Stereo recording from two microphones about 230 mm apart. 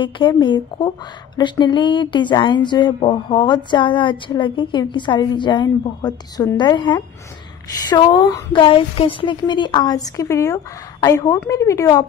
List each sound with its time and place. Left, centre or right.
0.0 s a woman's voice: centre